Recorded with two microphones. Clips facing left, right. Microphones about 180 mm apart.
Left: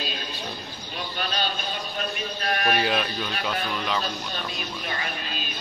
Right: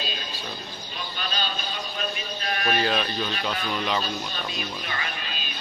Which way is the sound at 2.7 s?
10° left (ahead or behind).